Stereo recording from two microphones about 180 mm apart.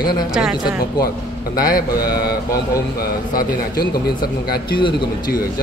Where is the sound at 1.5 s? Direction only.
55° left (ahead or behind).